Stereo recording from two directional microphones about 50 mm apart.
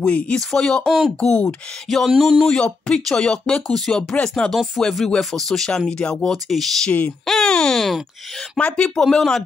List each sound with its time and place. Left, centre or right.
0.0 s speech: left
0.4 s speech: centre
1.9 s a sound: centre
2.9 s speech: centre
6.3 s a sound: centre
7.1 s speech: centre